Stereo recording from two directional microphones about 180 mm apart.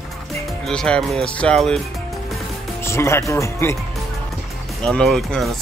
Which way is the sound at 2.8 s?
15° left (ahead or behind).